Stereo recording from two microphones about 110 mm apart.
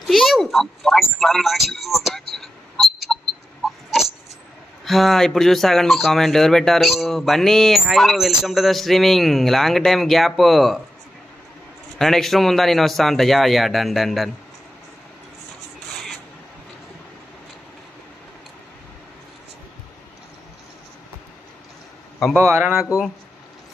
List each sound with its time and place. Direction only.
0.0 s a sound: centre (ahead or behind)
4.8 s speech: centre (ahead or behind)
12.0 s speech: 5° left (ahead or behind)
22.4 s speech: 25° right (ahead or behind)
22.7 s speech: 5° right (ahead or behind)